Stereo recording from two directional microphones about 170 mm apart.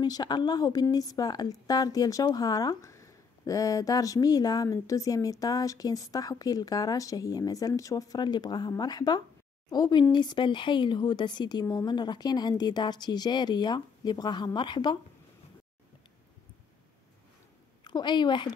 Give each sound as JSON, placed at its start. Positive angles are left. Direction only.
{"t": 0.0, "sound": "a woman's voice", "side_deg": 25}
{"t": 17.8, "sound": "a woman's voice", "side_deg": 25}